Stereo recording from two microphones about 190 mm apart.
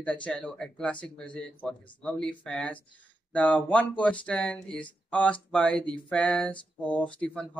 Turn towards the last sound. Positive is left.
turn(degrees=5)  # may be behind; listen again after turning